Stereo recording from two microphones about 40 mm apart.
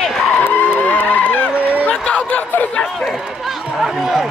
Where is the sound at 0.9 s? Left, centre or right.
Left.